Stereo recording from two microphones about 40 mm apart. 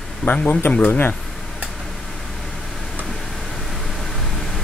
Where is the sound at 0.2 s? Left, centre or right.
Left.